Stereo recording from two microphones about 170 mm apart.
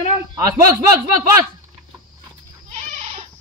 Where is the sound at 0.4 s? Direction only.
20° right (ahead or behind).